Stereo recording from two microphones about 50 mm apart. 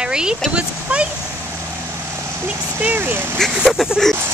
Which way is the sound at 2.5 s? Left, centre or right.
Right.